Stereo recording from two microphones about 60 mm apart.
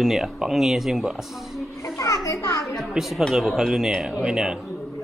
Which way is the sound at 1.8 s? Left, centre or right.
Left.